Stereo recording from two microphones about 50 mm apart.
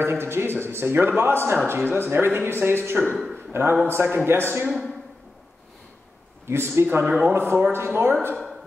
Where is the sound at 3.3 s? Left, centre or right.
Right.